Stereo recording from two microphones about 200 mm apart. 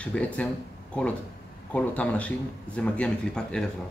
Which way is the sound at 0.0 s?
5° left (ahead or behind).